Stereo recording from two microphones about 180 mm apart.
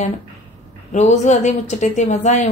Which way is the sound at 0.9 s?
40° left (ahead or behind).